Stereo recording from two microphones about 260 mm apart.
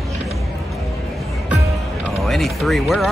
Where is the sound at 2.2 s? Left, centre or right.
Centre.